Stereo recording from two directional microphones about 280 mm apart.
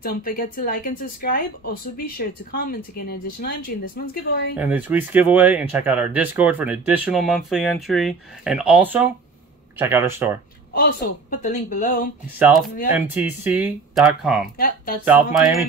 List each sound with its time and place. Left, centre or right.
0.0 s speech: left
4.6 s speech: centre
10.7 s a woman's voice: left
12.4 s speech: centre